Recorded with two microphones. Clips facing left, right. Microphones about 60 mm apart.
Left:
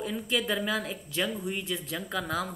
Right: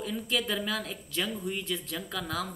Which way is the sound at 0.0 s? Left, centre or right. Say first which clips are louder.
Left 1 dB; centre.